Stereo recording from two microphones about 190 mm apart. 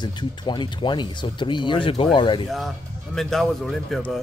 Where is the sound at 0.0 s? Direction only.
25° left (ahead or behind).